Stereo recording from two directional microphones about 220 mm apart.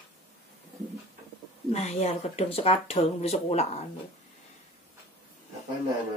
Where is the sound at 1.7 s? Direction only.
30° left (ahead or behind).